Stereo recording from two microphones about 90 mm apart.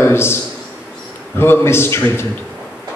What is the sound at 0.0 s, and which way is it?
Speech, 25° left (ahead or behind).